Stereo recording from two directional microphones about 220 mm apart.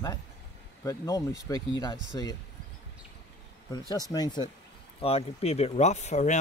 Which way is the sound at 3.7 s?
15° left (ahead or behind).